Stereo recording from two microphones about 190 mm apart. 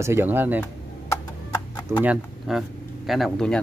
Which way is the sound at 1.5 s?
20° left (ahead or behind).